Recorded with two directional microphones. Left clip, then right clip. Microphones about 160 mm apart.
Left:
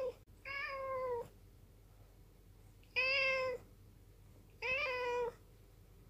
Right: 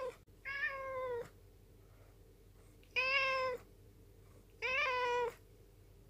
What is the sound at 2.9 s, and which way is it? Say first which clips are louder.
Cat: even; 20° right (ahead or behind).